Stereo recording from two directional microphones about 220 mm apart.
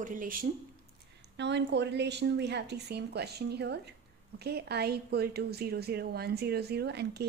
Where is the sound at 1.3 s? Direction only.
50° right (ahead or behind).